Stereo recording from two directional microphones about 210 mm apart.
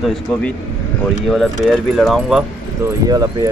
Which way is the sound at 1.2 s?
Centre (ahead or behind).